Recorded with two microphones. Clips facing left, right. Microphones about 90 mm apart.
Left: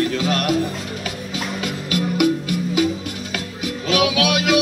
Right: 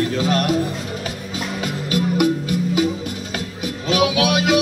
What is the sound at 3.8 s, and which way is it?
Music, 35° right (ahead or behind).